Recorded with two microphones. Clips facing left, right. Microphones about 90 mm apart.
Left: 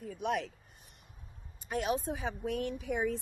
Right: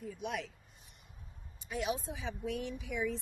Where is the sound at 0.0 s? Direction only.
50° left (ahead or behind).